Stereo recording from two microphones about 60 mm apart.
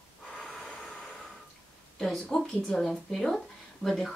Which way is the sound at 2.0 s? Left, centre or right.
Centre.